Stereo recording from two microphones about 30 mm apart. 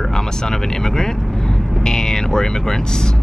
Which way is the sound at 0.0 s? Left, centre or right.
Centre.